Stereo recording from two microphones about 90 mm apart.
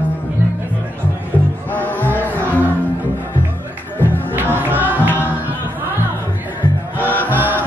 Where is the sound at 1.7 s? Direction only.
20° left (ahead or behind).